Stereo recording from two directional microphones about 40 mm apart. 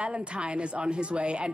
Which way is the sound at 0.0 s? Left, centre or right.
Right.